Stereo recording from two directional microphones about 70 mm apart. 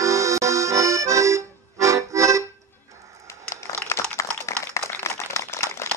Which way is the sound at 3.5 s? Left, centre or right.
Left.